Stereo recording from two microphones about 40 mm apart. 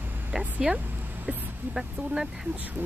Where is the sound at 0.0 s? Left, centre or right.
Right.